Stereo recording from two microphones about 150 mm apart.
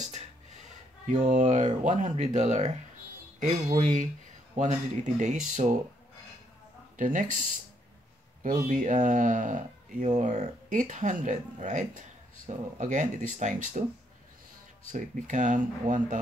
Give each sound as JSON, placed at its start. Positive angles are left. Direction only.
{"t": 1.0, "sound": "speech", "side_deg": -50}
{"t": 7.0, "sound": "speech", "side_deg": -60}
{"t": 8.4, "sound": "speech", "side_deg": -60}
{"t": 14.9, "sound": "speech", "side_deg": -55}